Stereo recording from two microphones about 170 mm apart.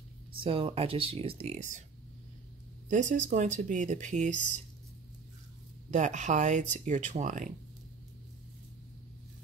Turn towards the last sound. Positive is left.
turn(degrees=-45)  # may be behind; listen again after turning